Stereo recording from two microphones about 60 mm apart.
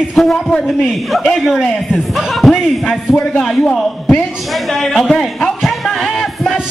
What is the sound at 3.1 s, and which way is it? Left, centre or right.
Speech, centre.